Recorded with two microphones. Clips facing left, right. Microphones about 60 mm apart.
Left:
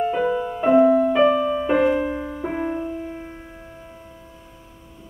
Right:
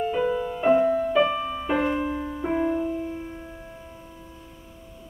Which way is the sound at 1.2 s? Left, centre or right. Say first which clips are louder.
Left 7 dB; centre.